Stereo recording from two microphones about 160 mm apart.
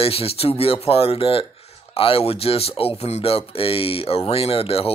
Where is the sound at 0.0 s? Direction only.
35° left (ahead or behind).